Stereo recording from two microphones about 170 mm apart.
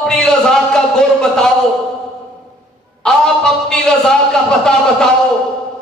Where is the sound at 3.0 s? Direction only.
5° left (ahead or behind).